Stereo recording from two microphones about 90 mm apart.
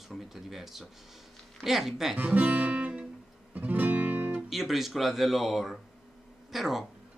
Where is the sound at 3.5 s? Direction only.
15° right (ahead or behind).